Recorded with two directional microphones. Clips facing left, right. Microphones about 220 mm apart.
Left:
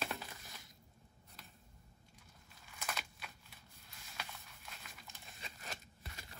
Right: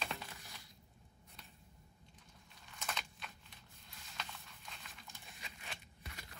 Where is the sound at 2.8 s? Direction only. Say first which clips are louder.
Even; 5° left (ahead or behind).